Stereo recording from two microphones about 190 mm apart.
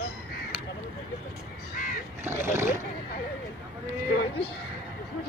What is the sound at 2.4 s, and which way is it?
Vehicle, 10° right (ahead or behind).